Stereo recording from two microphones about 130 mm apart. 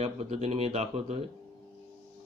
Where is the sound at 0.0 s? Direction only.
50° right (ahead or behind).